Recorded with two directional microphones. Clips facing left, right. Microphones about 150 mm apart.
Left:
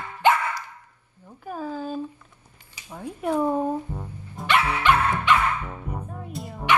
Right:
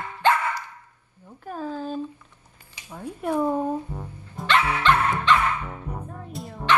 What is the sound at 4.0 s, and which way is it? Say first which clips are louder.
Music: even; 10° left (ahead or behind).